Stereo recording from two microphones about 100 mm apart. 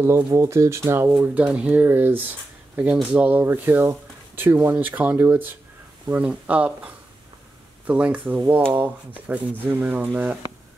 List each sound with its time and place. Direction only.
0.0 s speech: 25° right (ahead or behind)
1.2 s speech: 15° right (ahead or behind)